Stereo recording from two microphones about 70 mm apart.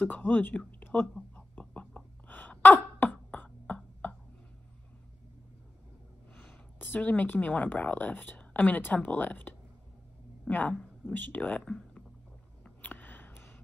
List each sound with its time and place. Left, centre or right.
0.0 s a woman's voice: left
0.6 s a sound: left
1.3 s sneeze: centre
6.8 s a woman's voice: left
10.7 s speech: centre
12.6 s a sound: left